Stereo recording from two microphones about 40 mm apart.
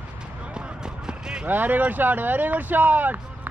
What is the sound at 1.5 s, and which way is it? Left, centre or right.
Speech, right.